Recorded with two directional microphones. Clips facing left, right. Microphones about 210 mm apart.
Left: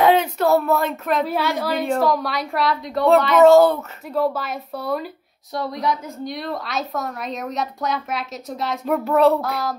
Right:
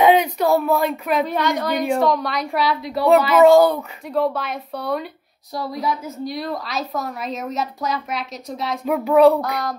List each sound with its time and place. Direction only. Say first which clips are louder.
0.0 s a woman's voice: right 1 dB; 10° right (ahead or behind)